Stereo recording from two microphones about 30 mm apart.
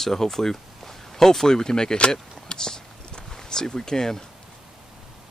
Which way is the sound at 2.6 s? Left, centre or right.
Centre.